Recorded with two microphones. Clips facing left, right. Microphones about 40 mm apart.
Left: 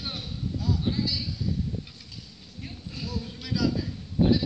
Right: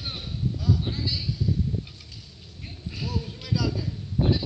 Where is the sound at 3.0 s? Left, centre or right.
Right.